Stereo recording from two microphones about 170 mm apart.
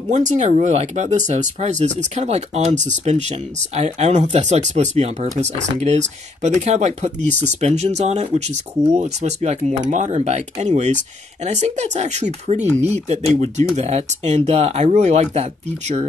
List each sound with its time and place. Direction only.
0.1 s speech: 45° right (ahead or behind)